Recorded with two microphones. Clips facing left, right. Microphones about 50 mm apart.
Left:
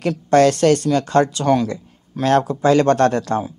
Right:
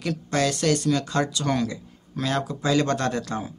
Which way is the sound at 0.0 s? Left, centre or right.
Left.